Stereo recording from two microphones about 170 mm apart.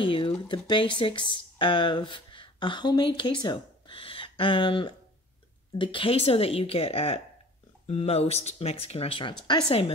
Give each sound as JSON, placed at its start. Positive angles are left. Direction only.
{"t": 0.0, "sound": "speech", "side_deg": 30}